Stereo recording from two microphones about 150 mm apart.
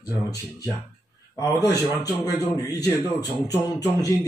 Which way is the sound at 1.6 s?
25° left (ahead or behind).